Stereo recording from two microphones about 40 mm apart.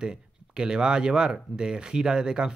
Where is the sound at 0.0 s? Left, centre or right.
Centre.